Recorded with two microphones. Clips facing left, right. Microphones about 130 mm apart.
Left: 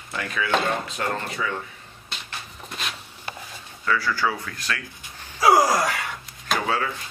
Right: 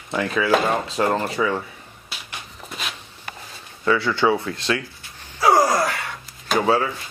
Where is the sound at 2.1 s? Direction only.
5° right (ahead or behind).